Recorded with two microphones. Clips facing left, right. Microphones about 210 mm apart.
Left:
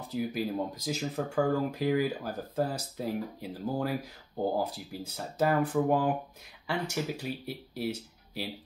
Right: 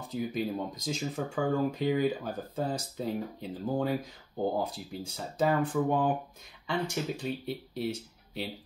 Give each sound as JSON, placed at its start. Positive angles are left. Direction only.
{"t": 0.1, "sound": "speech", "side_deg": 5}
{"t": 5.0, "sound": "speech", "side_deg": 5}